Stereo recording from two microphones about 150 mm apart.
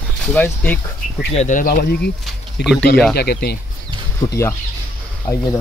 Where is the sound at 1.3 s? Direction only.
50° left (ahead or behind); by 2.1 s 75° left (ahead or behind).